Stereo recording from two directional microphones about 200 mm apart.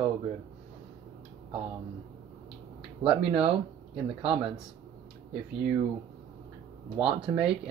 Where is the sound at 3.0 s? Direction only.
25° right (ahead or behind).